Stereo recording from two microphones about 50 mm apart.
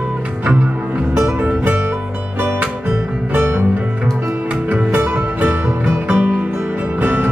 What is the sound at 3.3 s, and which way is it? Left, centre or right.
Music, right.